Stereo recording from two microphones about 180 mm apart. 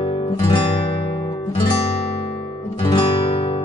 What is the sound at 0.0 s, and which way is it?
Guitar, 30° left (ahead or behind).